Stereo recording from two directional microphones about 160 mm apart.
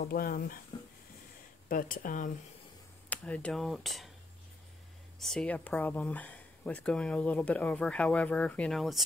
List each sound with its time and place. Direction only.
0.0 s speech: 65° left (ahead or behind)
1.7 s speech: 60° left (ahead or behind)
3.1 s speech: 10° left (ahead or behind)
5.2 s speech: 5° left (ahead or behind)